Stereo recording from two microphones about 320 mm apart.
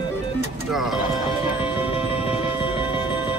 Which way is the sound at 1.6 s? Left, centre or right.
Centre.